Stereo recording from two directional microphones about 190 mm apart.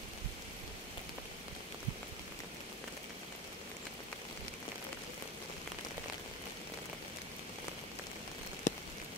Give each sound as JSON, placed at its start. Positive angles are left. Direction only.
{"t": 8.7, "sound": "rain on surface", "side_deg": 40}